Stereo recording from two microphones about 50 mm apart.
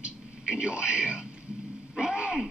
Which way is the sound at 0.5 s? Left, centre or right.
Centre.